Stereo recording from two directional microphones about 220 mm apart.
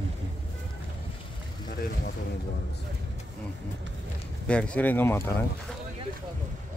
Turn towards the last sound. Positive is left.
turn(degrees=10)  # may be behind; listen again after turning